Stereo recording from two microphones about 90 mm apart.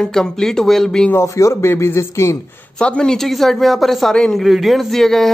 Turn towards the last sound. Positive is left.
turn(degrees=5)  # may be behind; listen again after turning